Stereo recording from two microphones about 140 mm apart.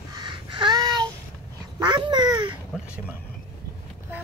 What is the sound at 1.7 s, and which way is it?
Babbling, 30° right (ahead or behind).